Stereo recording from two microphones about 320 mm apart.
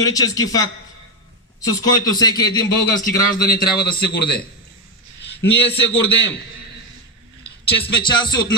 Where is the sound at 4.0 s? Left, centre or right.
Left.